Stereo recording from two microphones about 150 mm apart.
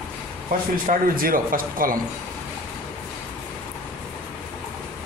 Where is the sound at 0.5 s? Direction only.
70° right (ahead or behind).